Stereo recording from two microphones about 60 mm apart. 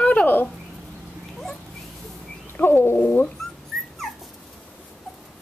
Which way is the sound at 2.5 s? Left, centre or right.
Left.